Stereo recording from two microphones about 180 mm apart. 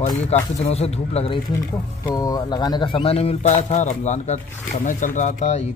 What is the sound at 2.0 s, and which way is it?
Speech, 20° left (ahead or behind).